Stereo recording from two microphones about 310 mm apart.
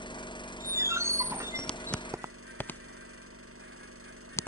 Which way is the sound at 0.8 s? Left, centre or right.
Centre.